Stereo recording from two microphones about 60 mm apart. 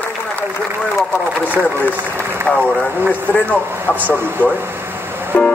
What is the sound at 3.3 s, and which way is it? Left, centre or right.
Speech, left.